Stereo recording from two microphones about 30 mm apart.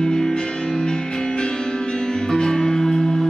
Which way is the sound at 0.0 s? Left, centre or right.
Left.